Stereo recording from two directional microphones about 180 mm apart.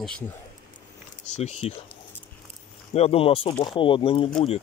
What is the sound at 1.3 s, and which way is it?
Speech, 35° left (ahead or behind).